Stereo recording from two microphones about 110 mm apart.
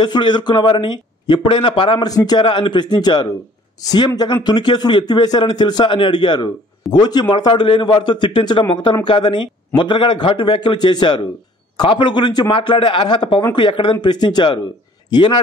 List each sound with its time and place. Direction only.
0.0 s speech: 45° left (ahead or behind)
2.0 s a man's voice: 35° left (ahead or behind)
2.4 s a man's voice: 50° left (ahead or behind)